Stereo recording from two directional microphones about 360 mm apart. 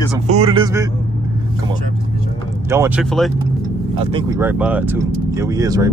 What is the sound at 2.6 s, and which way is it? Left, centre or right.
Speech, centre.